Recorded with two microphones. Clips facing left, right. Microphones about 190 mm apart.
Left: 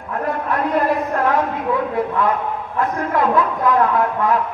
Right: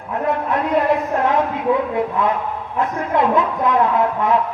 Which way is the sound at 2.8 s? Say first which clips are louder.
Right 1 dB; 20° right (ahead or behind).